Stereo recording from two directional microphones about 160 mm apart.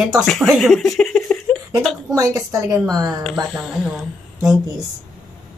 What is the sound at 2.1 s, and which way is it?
A woman's voice, 20° right (ahead or behind).